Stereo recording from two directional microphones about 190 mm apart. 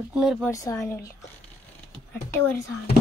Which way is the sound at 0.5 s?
15° left (ahead or behind).